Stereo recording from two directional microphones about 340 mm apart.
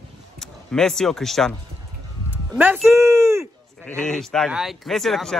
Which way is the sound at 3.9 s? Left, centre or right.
Centre.